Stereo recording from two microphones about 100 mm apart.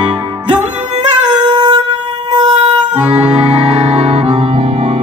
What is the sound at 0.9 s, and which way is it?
Music, 45° right (ahead or behind).